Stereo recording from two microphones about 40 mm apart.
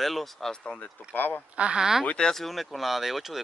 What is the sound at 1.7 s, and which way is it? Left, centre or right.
Speech, centre.